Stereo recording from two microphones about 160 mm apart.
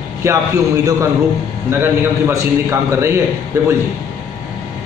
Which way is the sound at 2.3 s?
15° right (ahead or behind).